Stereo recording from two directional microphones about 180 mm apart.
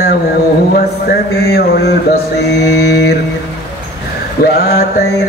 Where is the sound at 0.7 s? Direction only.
60° left (ahead or behind).